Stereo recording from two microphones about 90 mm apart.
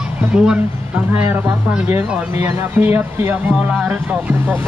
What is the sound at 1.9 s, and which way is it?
Speech, 25° right (ahead or behind).